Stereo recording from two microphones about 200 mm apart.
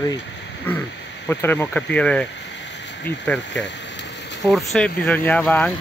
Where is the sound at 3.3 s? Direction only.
5° left (ahead or behind).